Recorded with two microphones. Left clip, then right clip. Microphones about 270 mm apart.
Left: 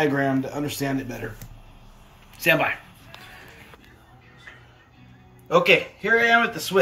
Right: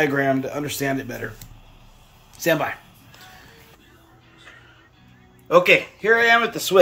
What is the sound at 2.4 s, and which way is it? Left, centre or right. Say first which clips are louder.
Speech: left 1 dB; centre.